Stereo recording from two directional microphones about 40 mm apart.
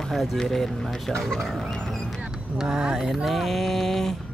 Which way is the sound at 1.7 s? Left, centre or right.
Centre.